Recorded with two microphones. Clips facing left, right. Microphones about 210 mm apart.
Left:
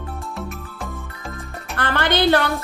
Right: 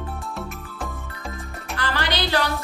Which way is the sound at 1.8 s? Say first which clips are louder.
Left 6 dB; 55° left (ahead or behind).